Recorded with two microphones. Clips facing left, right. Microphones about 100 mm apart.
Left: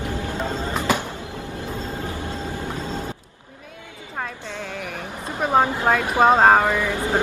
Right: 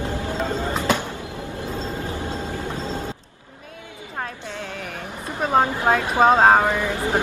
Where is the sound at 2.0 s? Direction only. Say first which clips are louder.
Right 1 dB; 25° right (ahead or behind).